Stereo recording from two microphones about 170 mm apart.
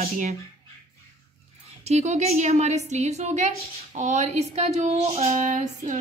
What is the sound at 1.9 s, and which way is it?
Speech, 40° right (ahead or behind).